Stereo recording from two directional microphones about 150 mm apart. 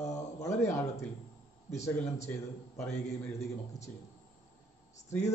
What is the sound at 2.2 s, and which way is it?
A man's voice, 15° left (ahead or behind).